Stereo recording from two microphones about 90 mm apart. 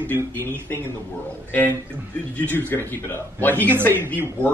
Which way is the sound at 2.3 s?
20° left (ahead or behind).